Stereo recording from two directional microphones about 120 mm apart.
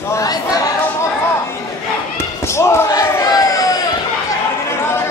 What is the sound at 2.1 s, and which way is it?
Slam, 20° left (ahead or behind).